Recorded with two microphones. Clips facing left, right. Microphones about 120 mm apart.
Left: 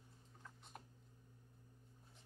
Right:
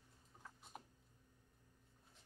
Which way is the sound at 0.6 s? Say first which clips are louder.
Right 2 dB; 5° right (ahead or behind).